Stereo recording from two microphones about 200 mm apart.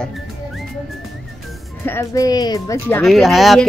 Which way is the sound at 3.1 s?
Centre (ahead or behind).